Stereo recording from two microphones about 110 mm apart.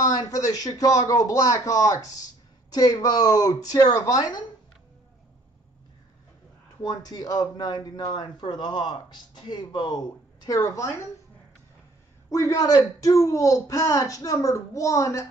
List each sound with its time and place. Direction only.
0.0 s speech: 35° left (ahead or behind)
6.8 s speech: 35° left (ahead or behind)
12.3 s speech: 30° left (ahead or behind)